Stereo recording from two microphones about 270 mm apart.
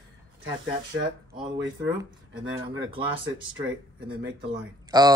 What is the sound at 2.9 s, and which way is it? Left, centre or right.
Speech, centre.